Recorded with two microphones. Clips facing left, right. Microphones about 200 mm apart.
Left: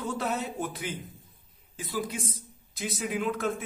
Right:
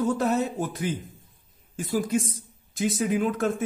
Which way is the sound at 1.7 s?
50° right (ahead or behind).